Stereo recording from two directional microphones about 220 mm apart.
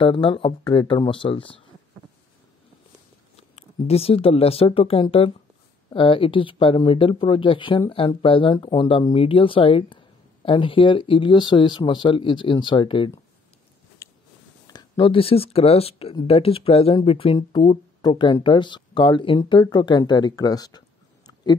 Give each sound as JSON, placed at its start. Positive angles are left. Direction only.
{"t": 0.0, "sound": "speech", "side_deg": 25}
{"t": 3.3, "sound": "speech", "side_deg": 30}
{"t": 14.0, "sound": "a sound", "side_deg": 10}
{"t": 14.7, "sound": "speech", "side_deg": 20}